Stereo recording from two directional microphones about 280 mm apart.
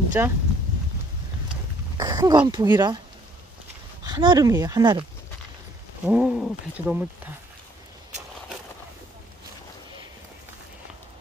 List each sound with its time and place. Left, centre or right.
0.2 s speech: centre
2.0 s speech: centre
4.0 s speech: centre
6.0 s speech: centre